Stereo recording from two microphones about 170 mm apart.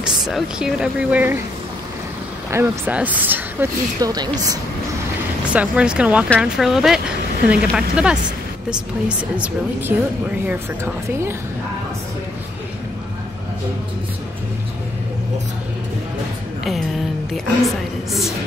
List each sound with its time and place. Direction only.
0.0 s speech: centre (ahead or behind)
2.5 s speech: 15° right (ahead or behind)
4.0 s speech: 20° right (ahead or behind)
5.5 s speech: 5° right (ahead or behind)
9.4 s speech: 10° right (ahead or behind)
16.6 s a woman's voice: centre (ahead or behind)